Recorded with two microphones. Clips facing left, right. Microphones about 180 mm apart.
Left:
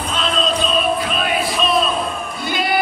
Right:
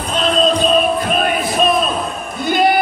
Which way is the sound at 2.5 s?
50° right (ahead or behind).